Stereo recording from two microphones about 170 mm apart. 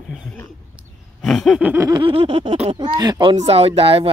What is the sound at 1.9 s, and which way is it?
Speech, 30° right (ahead or behind).